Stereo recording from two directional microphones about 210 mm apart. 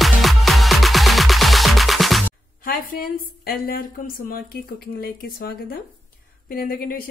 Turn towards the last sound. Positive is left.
turn(degrees=45)  # may be behind; listen again after turning